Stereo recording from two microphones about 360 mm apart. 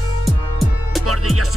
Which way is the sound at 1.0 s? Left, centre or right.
Right.